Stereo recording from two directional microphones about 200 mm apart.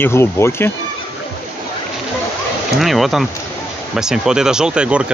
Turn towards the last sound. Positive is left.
turn(degrees=-5)  # may be behind; listen again after turning